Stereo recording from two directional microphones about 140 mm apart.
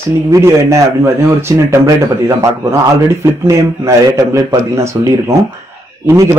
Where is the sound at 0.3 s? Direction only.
20° right (ahead or behind).